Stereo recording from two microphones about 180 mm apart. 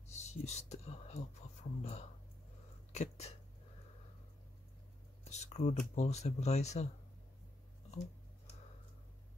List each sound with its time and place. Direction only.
0.1 s speech: 40° left (ahead or behind)
5.2 s a sound: 40° left (ahead or behind)
5.8 s speech: 40° left (ahead or behind)